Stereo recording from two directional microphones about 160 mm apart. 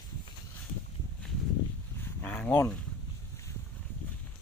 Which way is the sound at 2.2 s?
10° left (ahead or behind).